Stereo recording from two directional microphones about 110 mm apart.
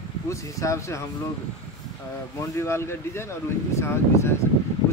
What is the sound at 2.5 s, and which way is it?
Speech, 25° left (ahead or behind).